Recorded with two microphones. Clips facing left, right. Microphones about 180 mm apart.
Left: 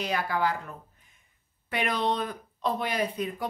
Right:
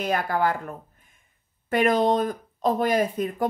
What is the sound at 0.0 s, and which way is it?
Speech, 50° right (ahead or behind).